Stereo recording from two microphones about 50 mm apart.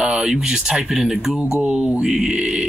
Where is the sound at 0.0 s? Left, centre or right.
Right.